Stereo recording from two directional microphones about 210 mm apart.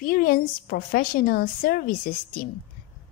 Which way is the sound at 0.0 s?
45° left (ahead or behind).